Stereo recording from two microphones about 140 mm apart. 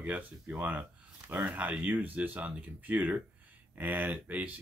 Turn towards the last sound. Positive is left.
turn(degrees=-10)  # may be behind; listen again after turning